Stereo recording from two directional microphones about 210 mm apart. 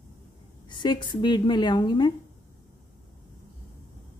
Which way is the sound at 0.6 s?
20° left (ahead or behind).